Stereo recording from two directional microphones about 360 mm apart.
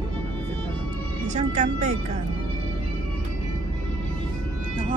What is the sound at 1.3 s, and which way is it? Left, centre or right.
Speech, centre.